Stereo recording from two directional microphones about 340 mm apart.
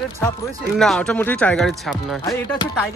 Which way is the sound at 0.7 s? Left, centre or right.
Centre.